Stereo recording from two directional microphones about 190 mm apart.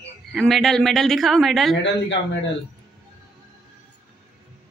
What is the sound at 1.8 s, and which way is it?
Speech, 70° left (ahead or behind).